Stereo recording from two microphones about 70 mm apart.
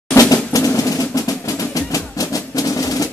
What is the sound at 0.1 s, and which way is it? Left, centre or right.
Drum roll, left.